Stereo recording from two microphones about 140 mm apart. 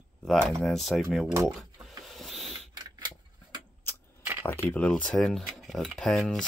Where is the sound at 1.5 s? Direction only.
Centre (ahead or behind).